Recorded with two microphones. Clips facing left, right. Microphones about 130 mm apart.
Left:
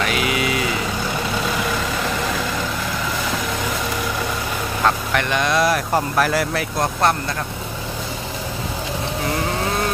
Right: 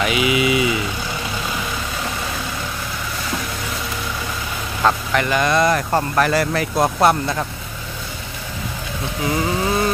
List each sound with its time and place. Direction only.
0.0 s speech: 5° right (ahead or behind)
4.8 s speech: centre (ahead or behind)